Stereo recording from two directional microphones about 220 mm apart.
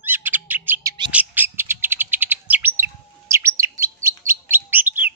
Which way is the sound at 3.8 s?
10° right (ahead or behind).